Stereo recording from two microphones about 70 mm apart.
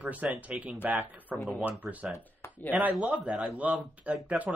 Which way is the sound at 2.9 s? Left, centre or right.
Centre.